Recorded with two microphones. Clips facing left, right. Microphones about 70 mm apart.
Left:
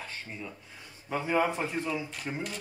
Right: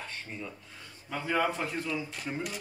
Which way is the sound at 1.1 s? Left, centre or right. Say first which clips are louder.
Left 2 dB; left.